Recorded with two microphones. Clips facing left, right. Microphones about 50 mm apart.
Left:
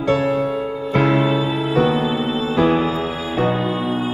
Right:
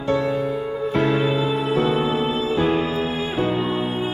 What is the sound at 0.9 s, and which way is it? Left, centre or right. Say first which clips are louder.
Music: left 4 dB; left.